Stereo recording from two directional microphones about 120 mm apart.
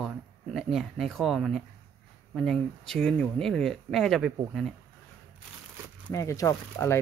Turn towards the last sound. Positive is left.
turn(degrees=25)  # may be behind; listen again after turning